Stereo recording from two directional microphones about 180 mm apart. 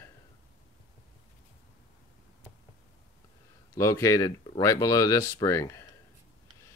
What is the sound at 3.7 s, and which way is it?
Speech, 15° left (ahead or behind).